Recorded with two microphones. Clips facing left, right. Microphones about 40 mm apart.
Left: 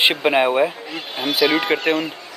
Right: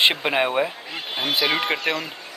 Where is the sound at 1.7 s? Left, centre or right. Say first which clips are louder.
Left 5 dB; left.